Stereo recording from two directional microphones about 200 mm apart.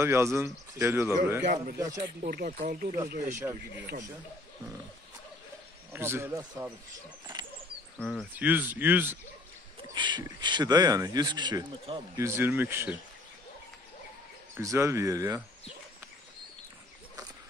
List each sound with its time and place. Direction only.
0.0 s speech: 15° right (ahead or behind)
1.4 s speech: 50° right (ahead or behind)
3.4 s speech: 10° right (ahead or behind)
5.9 s speech: 10° right (ahead or behind)
8.0 s speech: 5° left (ahead or behind)
8.4 s speech: 10° right (ahead or behind)
9.9 s speech: 20° right (ahead or behind)
12.2 s speech: 10° right (ahead or behind)
14.6 s speech: 15° right (ahead or behind)